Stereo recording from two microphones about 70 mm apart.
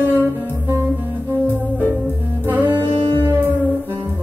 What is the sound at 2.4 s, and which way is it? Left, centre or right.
Music, right.